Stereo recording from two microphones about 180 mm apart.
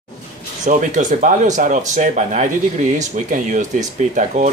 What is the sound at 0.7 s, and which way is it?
Speech, 45° right (ahead or behind).